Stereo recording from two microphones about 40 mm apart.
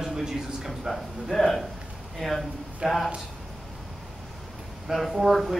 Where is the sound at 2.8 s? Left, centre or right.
Centre.